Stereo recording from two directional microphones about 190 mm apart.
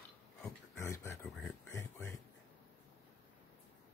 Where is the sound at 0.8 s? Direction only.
15° left (ahead or behind).